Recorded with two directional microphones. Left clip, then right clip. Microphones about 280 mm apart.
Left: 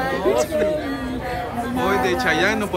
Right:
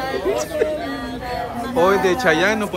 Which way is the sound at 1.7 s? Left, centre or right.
Centre.